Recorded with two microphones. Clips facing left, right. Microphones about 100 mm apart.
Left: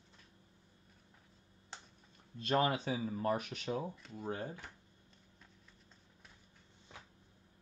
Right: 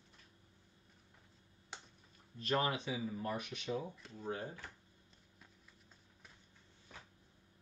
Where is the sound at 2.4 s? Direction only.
30° left (ahead or behind).